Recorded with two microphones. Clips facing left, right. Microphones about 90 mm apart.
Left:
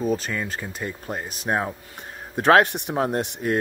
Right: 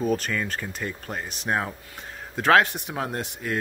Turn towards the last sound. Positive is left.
turn(degrees=25)  # may be behind; listen again after turning